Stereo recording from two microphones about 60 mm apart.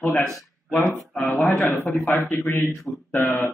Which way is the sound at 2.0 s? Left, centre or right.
Centre.